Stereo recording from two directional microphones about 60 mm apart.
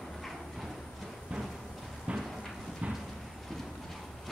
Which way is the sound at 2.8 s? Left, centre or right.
Centre.